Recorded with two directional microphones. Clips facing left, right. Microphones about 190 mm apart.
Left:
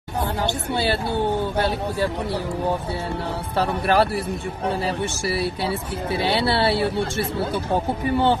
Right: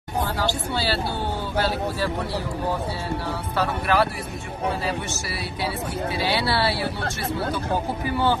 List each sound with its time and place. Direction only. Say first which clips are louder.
0.4 s speech: left 2 dB; 20° left (ahead or behind)
3.5 s speech: left 3 dB; 30° left (ahead or behind)
6.1 s speech: left 4 dB; 25° left (ahead or behind)